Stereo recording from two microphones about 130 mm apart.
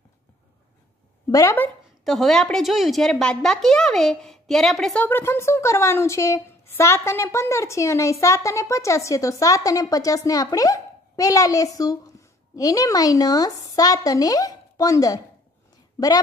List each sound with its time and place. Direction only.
1.3 s a woman's voice: 20° left (ahead or behind)
2.0 s a woman's voice: centre (ahead or behind)
5.0 s a woman's voice: 15° left (ahead or behind)